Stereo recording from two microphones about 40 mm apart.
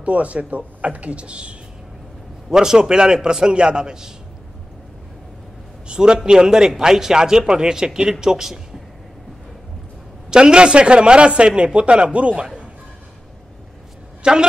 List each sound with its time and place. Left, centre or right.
0.0 s speech: right
2.5 s a man's voice: centre
5.9 s a man's voice: centre
10.3 s a man's voice: right
14.2 s a man's voice: right